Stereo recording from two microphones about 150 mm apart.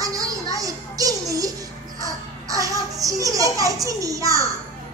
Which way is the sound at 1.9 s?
25° right (ahead or behind).